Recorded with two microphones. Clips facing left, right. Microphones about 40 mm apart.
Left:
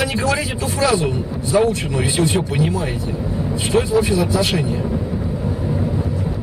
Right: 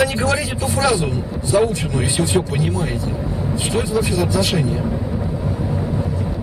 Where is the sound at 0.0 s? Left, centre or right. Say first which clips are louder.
Right 1 dB; centre.